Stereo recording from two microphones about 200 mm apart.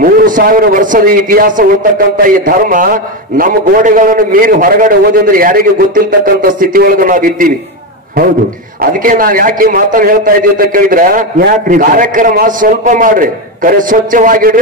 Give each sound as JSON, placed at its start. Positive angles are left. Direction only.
{"t": 0.0, "sound": "a man's voice", "side_deg": -45}